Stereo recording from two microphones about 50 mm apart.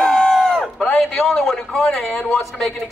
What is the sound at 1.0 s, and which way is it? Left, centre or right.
A woman's voice, centre.